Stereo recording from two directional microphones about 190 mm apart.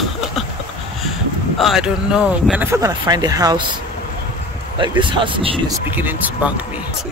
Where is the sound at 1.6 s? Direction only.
Centre (ahead or behind); by 3.6 s 20° right (ahead or behind).